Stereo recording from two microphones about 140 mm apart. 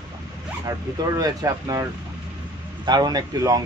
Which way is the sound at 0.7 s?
25° right (ahead or behind).